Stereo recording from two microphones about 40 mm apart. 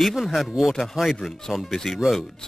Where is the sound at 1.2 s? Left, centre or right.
Centre.